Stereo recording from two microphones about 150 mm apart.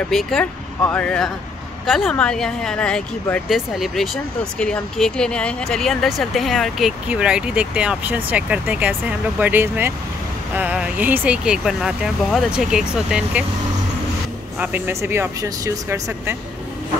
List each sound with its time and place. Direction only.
0.1 s speech: centre (ahead or behind)
14.6 s speech: 15° right (ahead or behind)